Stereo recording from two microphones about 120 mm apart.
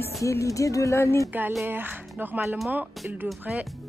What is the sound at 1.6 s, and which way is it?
Speech, 15° right (ahead or behind).